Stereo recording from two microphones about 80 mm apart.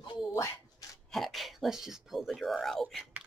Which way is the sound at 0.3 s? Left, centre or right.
Left.